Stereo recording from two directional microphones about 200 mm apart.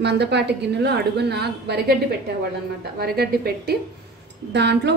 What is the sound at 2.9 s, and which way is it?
A woman's voice, 50° right (ahead or behind).